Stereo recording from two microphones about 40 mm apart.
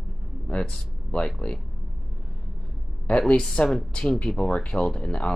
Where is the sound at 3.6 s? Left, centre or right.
Left.